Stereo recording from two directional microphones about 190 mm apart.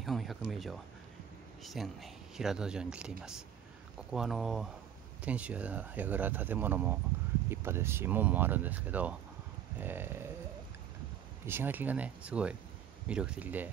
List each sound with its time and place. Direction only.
0.0 s speech: centre (ahead or behind)
11.4 s speech: 10° right (ahead or behind)